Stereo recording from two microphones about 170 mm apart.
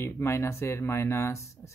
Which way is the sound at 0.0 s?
15° left (ahead or behind).